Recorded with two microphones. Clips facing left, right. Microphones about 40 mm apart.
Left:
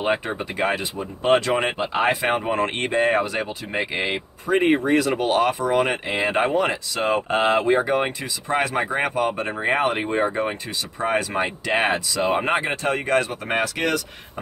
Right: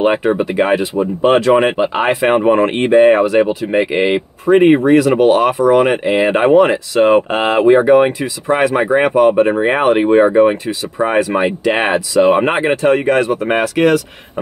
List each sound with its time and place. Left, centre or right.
0.0 s speech: right